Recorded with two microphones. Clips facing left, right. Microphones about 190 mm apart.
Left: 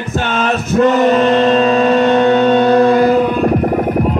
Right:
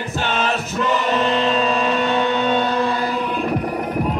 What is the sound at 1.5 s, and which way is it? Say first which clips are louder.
Vehicle: left 8 dB; 50° left (ahead or behind).